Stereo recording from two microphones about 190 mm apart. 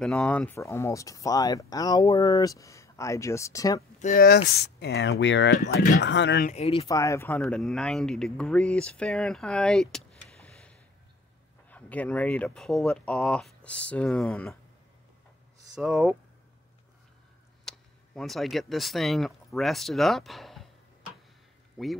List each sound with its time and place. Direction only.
0.0 s speech: 5° left (ahead or behind)
4.0 s speech: 50° left (ahead or behind)
5.2 s speech: 70° left (ahead or behind)
5.8 s speech: 60° left (ahead or behind)
6.4 s speech: 35° left (ahead or behind)
6.9 s speech: 15° left (ahead or behind)
15.7 s speech: 5° right (ahead or behind)
17.6 s speech: centre (ahead or behind)
21.8 s speech: centre (ahead or behind)